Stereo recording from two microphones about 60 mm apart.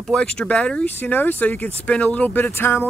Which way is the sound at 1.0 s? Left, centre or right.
Left.